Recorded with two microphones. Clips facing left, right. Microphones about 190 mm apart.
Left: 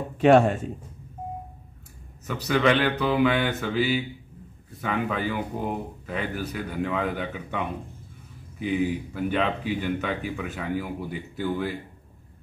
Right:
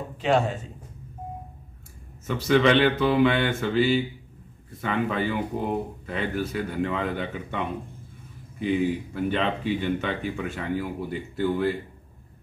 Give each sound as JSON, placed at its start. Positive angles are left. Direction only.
{"t": 0.2, "sound": "speech", "side_deg": 55}
{"t": 2.2, "sound": "speech", "side_deg": 5}